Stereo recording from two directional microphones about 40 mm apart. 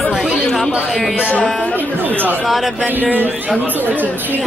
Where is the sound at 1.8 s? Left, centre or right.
Right.